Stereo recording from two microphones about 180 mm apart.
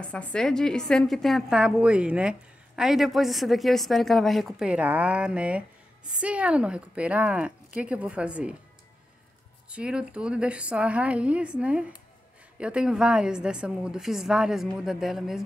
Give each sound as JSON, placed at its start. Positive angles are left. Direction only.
{"t": 0.0, "sound": "a woman's voice", "side_deg": 5}
{"t": 9.7, "sound": "a woman's voice", "side_deg": -5}